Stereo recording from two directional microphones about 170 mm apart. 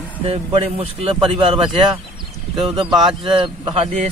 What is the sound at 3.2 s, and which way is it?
Speech, 30° right (ahead or behind).